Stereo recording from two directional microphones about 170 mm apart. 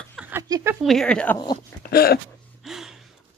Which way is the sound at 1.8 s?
65° left (ahead or behind).